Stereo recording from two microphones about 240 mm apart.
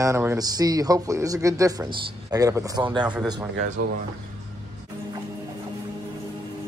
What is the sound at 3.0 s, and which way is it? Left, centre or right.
Speech, centre.